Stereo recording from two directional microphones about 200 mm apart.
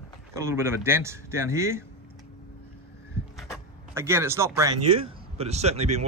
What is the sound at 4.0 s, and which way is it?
Speech, 15° right (ahead or behind).